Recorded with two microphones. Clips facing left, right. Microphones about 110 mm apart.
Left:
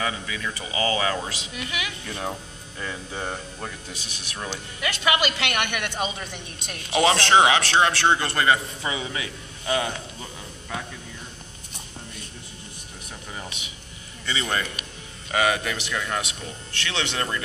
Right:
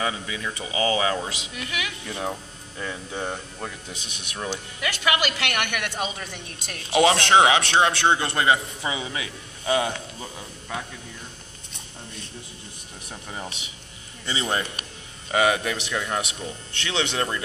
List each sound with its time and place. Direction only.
0.0 s a man's voice: 15° right (ahead or behind)
1.6 s speech: 5° left (ahead or behind)
3.1 s speech: centre (ahead or behind)
3.9 s a man's voice: 20° right (ahead or behind)
4.8 s speech: centre (ahead or behind)
5.5 s a woman's voice: 10° left (ahead or behind)
5.8 s a man's voice: 5° right (ahead or behind)
13.3 s music: 30° right (ahead or behind)
14.2 s a man's voice: 30° right (ahead or behind)
15.3 s a man's voice: 15° right (ahead or behind)